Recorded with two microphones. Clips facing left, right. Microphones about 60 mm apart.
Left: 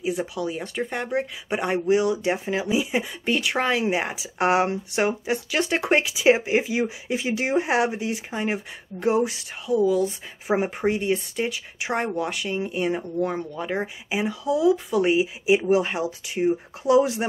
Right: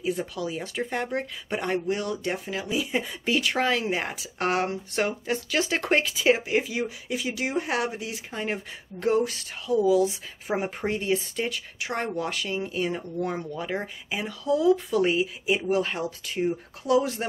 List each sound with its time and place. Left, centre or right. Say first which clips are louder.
0.0 s speech: left 2 dB; centre
3.0 s speech: left 1 dB; centre; by 8.2 s left
8.3 s speech: left 4 dB; centre
9.8 s speech: even; centre
10.5 s speech: left 5 dB; centre
10.9 s speech: left 2 dB; centre
11.8 s speech: left 4 dB; centre
12.2 s speech: left 3 dB; centre
15.1 s speech: left 5 dB; centre